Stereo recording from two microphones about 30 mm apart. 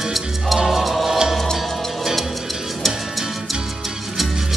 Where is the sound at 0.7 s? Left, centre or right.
Centre.